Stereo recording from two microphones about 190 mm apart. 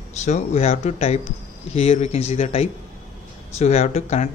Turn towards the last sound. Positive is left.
turn(degrees=35)  # may be behind; listen again after turning